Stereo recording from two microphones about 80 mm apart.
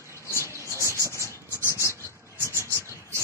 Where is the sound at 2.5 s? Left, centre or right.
Right.